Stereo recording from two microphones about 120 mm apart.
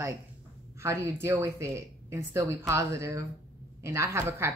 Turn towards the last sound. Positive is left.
turn(degrees=-25)  # may be behind; listen again after turning